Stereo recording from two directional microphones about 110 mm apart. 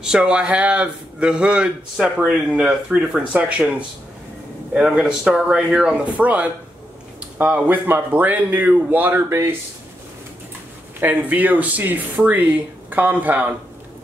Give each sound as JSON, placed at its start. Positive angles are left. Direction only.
{"t": 0.0, "sound": "speech", "side_deg": -5}
{"t": 4.7, "sound": "speech", "side_deg": -5}
{"t": 11.0, "sound": "speech", "side_deg": -15}